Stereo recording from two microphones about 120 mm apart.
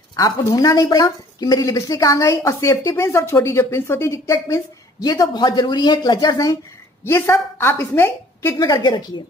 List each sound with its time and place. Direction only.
0.1 s a woman's voice: 30° left (ahead or behind)
7.1 s a woman's voice: 20° left (ahead or behind)